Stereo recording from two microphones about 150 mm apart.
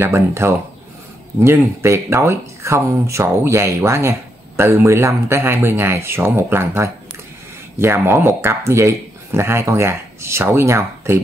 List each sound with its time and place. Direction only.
0.0 s speech: 15° right (ahead or behind)